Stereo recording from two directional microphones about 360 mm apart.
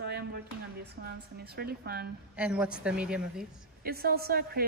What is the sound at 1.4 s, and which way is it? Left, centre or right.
Speech, right.